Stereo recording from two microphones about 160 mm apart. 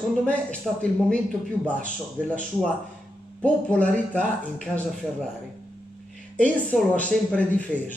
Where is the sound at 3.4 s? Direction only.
10° left (ahead or behind).